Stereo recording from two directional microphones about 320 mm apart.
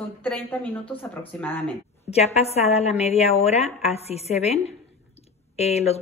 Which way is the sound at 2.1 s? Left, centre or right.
Centre.